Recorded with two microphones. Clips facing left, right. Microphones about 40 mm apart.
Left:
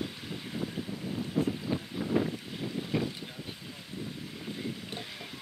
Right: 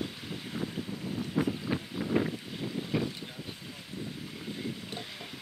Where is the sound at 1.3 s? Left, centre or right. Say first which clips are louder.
Even; right.